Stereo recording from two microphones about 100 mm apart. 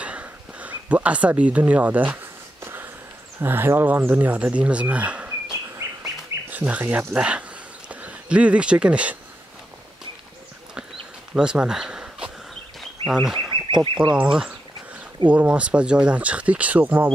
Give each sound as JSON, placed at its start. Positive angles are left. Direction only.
{"t": 0.0, "sound": "a sound", "side_deg": -15}
{"t": 3.3, "sound": "speech", "side_deg": -20}
{"t": 6.5, "sound": "speech", "side_deg": -20}
{"t": 11.3, "sound": "a sound", "side_deg": -10}
{"t": 13.1, "sound": "fowl", "side_deg": -5}
{"t": 13.6, "sound": "duck", "side_deg": -55}
{"t": 14.1, "sound": "speech", "side_deg": -10}